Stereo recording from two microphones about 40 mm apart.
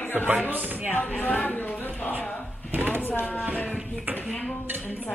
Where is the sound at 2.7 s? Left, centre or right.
Right.